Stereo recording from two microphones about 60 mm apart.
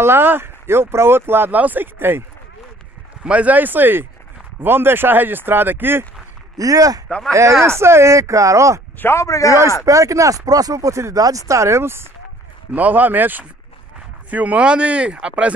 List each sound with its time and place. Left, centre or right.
0.0 s speech: right
3.3 s speech: right
6.5 s speech: right
7.1 s speech: centre
7.6 s speech: right
9.1 s a man's voice: left
9.8 s speech: right
12.7 s speech: right